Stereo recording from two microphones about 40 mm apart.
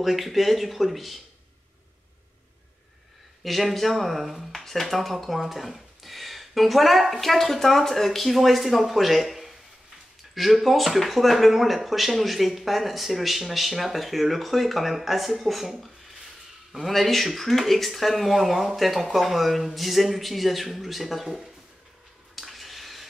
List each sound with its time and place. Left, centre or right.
0.0 s speech: centre
3.4 s speech: centre
22.3 s a sound: centre